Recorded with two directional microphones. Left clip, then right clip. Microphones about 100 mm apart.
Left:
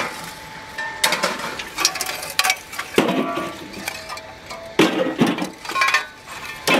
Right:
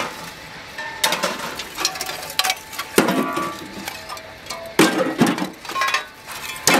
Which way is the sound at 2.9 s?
85° right.